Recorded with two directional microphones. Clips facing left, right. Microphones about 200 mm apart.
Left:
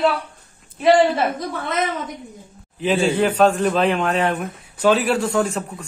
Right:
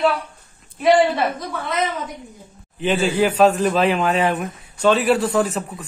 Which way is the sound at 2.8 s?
Centre (ahead or behind).